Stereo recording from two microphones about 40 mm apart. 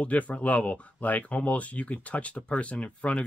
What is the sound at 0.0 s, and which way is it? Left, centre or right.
Speech, left.